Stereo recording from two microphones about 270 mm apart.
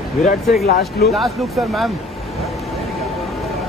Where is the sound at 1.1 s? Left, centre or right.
Centre.